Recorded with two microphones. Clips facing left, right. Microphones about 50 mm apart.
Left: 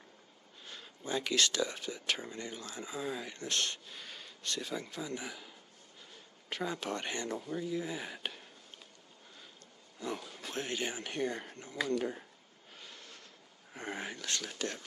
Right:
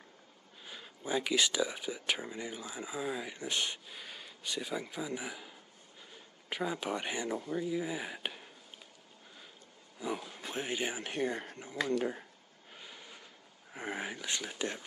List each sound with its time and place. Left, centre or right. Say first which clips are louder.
0.7 s speech: right 2 dB; centre
6.5 s speech: right 2 dB; centre
9.9 s speech: right 2 dB; centre
12.7 s vehicle: right 1 dB; centre
13.7 s speech: right 2 dB; centre